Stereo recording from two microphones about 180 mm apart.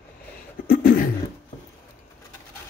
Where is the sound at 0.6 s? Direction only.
50° left (ahead or behind).